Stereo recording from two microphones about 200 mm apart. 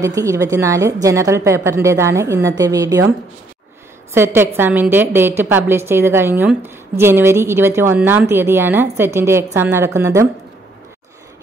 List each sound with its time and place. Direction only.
0.0 s a woman's voice: 15° right (ahead or behind)